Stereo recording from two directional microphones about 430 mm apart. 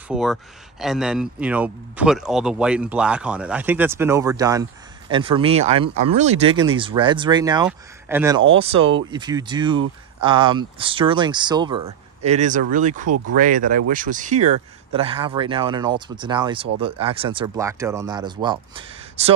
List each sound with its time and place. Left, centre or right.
0.1 s speech: centre